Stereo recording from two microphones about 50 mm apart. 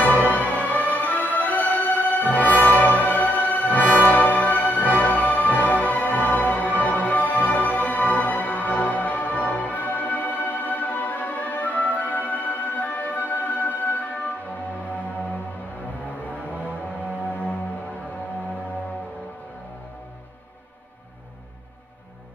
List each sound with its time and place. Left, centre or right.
0.0 s music: left
17.3 s music: left